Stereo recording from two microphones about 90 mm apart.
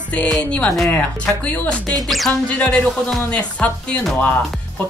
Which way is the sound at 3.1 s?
15° left (ahead or behind).